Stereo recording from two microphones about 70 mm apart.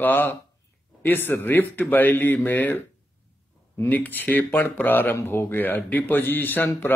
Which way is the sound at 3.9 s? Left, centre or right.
Left.